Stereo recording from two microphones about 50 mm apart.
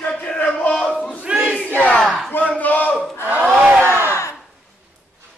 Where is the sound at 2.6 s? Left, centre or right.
Left.